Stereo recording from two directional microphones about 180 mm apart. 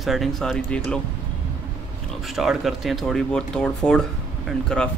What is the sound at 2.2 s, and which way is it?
Speech, centre (ahead or behind).